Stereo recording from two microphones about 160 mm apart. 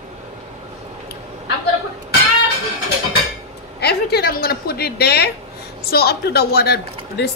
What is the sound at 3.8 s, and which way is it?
A woman's voice, 80° left.